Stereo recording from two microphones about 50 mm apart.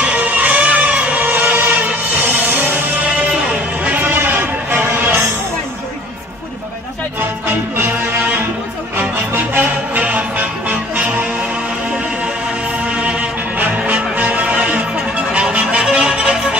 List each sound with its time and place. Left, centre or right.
0.0 s music: right
4.1 s music: right
7.2 s music: right
12.8 s music: right